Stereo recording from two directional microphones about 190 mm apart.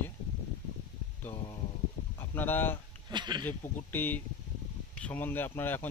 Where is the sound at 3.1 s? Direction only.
25° right (ahead or behind).